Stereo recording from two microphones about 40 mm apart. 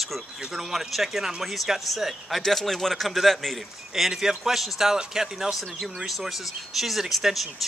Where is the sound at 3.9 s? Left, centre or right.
Centre.